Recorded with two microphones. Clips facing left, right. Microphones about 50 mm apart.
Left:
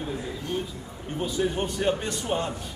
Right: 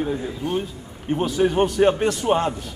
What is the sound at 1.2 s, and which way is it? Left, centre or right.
Speech, right.